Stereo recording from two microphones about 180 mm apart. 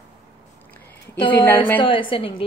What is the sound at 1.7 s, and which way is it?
Speech, 30° left (ahead or behind).